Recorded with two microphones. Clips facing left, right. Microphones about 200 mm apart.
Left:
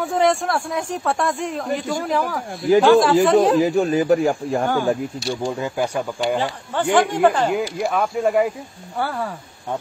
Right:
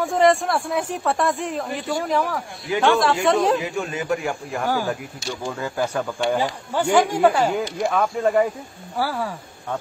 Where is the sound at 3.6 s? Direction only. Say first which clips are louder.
Left 10 dB; 35° left (ahead or behind).